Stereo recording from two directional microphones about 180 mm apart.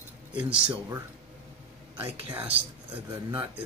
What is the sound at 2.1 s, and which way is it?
Speech, 10° right (ahead or behind).